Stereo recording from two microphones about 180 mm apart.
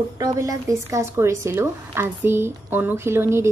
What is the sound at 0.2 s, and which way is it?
A woman's voice, 20° right (ahead or behind).